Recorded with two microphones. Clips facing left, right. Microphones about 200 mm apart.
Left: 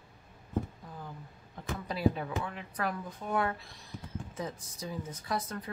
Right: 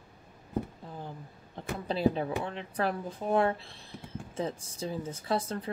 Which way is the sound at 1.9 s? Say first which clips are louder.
Right 3 dB; 30° right (ahead or behind).